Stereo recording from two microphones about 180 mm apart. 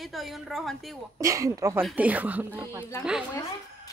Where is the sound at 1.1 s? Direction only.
15° right (ahead or behind).